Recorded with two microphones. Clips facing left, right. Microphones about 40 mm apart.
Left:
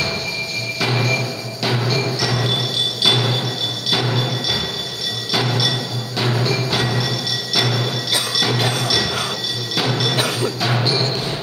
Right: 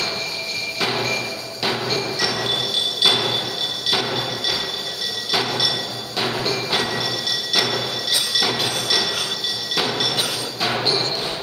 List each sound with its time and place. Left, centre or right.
0.7 s music: centre
8.5 s music: left
8.8 s train: centre
9.8 s music: centre